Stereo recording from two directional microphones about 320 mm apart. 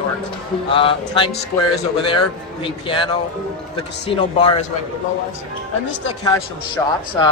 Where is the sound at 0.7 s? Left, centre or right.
Centre.